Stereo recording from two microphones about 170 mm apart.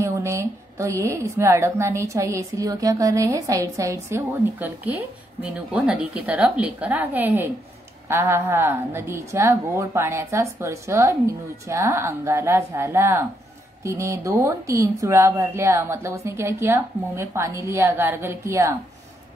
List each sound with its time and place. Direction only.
0.0 s a woman's voice: 15° right (ahead or behind)